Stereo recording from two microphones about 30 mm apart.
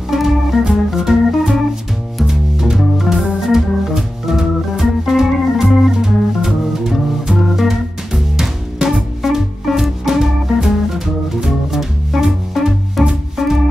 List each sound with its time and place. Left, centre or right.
0.1 s organ: centre
2.6 s organ: centre
5.9 s music: centre
9.2 s music: centre